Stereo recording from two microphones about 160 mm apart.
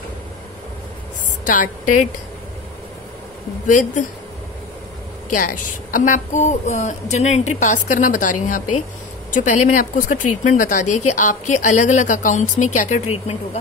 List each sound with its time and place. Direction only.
1.4 s a woman's voice: 55° left (ahead or behind)
3.6 s speech: 55° left (ahead or behind)
5.3 s speech: 60° left (ahead or behind)